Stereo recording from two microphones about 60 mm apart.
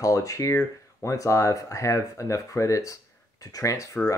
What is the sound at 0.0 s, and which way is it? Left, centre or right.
Speech, left.